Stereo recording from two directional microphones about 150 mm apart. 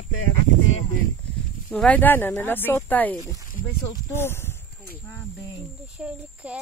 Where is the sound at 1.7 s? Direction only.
5° left (ahead or behind).